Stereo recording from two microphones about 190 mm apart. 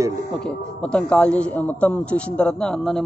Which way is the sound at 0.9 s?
5° left (ahead or behind).